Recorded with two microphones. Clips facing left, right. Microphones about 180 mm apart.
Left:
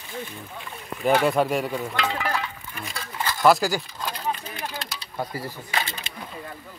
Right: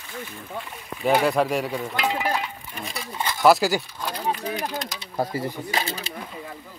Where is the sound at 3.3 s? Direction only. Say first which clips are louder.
Right 1 dB; 5° right (ahead or behind).